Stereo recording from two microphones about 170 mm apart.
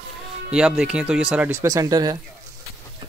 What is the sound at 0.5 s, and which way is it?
A man's voice, 5° right (ahead or behind).